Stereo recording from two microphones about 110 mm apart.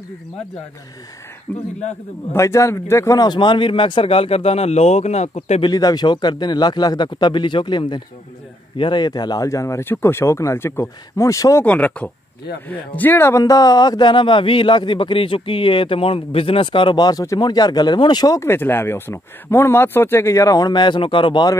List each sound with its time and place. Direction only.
1.5 s speech: 15° left (ahead or behind)
2.3 s speech: 25° left (ahead or behind)
3.2 s speech: 45° left (ahead or behind); by 5.6 s 80° left
5.6 s speech: 35° left (ahead or behind)
11.6 s speech: 10° left (ahead or behind); by 18.5 s 35° left (ahead or behind)
18.5 s speech: 20° left (ahead or behind); by 21.5 s 45° left (ahead or behind)